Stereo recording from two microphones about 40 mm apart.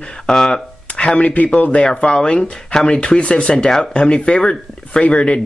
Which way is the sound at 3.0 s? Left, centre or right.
Left.